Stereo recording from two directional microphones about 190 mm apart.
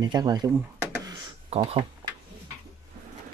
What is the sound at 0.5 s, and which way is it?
Power windows, 10° right (ahead or behind).